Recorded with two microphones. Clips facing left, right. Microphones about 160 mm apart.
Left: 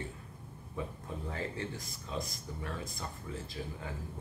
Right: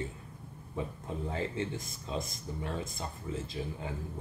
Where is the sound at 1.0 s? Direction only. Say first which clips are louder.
Right 4 dB; 20° right (ahead or behind).